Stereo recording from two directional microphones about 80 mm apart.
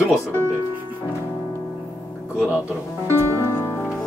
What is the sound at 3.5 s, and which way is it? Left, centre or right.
Music, left.